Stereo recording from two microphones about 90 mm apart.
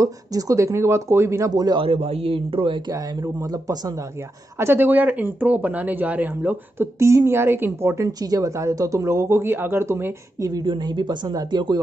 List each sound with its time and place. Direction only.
0.0 s a woman's voice: 40° right (ahead or behind)
1.5 s a man's voice: 50° right (ahead or behind)
1.8 s speech: 90° right
2.9 s a woman's voice: 40° right (ahead or behind)
4.6 s speech: 25° right (ahead or behind)
7.0 s a woman's voice: 30° right (ahead or behind)
10.6 s speech: 60° right (ahead or behind)